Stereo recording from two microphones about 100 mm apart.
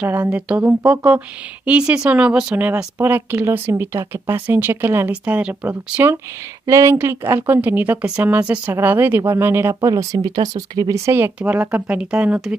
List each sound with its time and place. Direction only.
0.0 s speech: 15° right (ahead or behind)
6.6 s speech: 30° right (ahead or behind)
9.8 s speech: 40° right (ahead or behind)
11.1 s speech: 20° right (ahead or behind)